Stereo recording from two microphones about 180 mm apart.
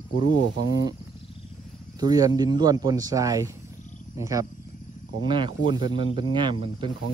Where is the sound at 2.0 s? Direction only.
20° right (ahead or behind).